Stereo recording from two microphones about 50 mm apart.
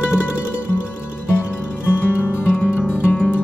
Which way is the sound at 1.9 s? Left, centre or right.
Left.